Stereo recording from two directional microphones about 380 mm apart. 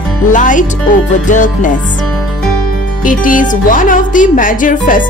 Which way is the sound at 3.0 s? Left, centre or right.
Left.